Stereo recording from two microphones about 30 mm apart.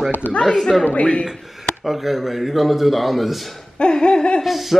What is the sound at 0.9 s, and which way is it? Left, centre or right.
Speech, left.